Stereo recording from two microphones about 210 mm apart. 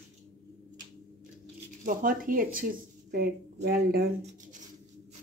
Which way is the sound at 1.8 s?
40° right (ahead or behind).